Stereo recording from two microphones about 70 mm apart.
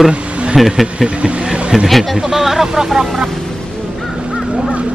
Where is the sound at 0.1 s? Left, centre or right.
Centre.